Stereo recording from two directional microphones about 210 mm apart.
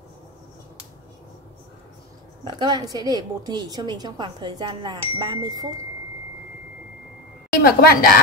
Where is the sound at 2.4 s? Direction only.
20° right (ahead or behind).